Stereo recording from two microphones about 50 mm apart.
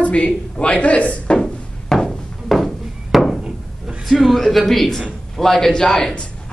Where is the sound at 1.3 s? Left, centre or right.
Centre.